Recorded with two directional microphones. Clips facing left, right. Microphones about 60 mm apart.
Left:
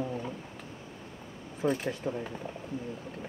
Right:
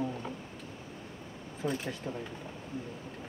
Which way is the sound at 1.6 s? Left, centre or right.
Left.